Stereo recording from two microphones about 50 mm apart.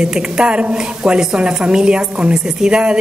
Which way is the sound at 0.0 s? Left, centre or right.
Centre.